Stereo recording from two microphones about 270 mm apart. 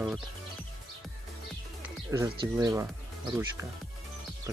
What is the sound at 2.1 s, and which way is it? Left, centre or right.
Speech, centre.